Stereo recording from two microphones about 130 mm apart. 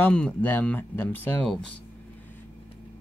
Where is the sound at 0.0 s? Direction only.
10° left (ahead or behind).